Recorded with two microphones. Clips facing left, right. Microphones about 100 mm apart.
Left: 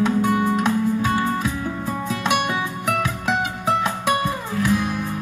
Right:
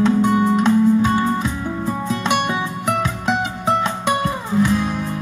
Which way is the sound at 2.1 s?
10° left (ahead or behind).